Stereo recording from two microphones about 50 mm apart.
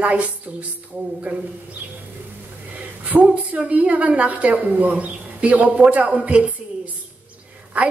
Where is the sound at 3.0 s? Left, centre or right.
Right.